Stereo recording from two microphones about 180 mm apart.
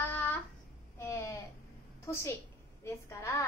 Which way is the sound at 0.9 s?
15° left (ahead or behind).